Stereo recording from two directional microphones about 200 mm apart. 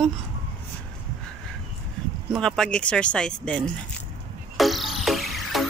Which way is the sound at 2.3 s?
5° left (ahead or behind).